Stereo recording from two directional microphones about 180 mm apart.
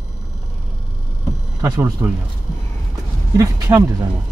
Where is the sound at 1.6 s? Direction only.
10° right (ahead or behind).